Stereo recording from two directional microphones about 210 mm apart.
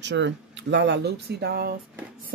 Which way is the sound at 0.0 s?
60° right (ahead or behind).